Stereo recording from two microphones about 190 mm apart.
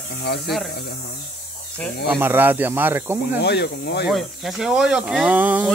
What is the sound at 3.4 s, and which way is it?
Speech, 60° left (ahead or behind).